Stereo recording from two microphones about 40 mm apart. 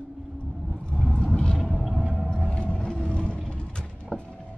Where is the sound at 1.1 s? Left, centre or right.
Left.